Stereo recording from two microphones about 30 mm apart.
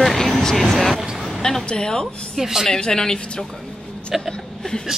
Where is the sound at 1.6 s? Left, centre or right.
Left.